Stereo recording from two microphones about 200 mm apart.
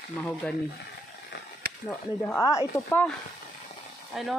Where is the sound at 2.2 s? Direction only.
15° left (ahead or behind).